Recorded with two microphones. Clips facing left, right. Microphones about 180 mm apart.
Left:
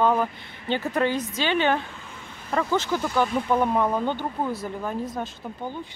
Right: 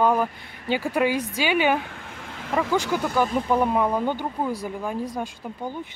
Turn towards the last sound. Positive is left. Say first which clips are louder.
# right 1 dB
turn(degrees=-15)  # may be behind; listen again after turning